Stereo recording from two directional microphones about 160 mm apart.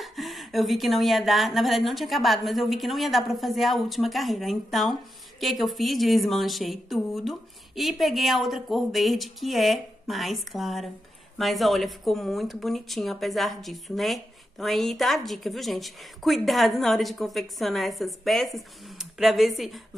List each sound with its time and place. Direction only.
0.0 s a woman's voice: centre (ahead or behind)